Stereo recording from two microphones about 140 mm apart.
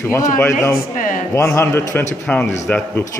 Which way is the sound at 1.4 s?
15° left (ahead or behind).